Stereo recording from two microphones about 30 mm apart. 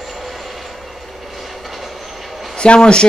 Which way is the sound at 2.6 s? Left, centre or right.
Left.